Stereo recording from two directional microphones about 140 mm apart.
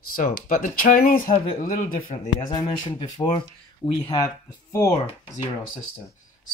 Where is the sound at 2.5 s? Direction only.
30° left (ahead or behind).